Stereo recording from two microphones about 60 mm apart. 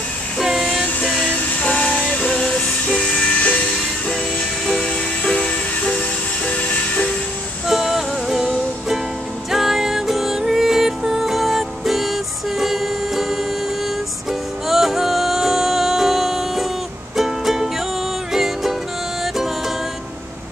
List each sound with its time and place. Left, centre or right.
0.4 s train: centre
1.0 s music: centre
4.8 s music: centre
7.6 s music: centre
14.7 s music: centre